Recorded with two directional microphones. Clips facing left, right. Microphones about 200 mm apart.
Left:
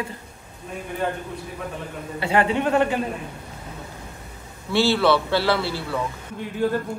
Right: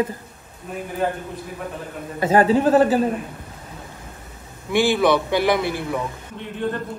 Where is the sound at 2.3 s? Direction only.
35° right (ahead or behind).